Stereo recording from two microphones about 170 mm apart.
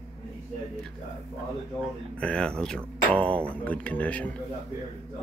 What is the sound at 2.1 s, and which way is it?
A man's voice, 5° left (ahead or behind).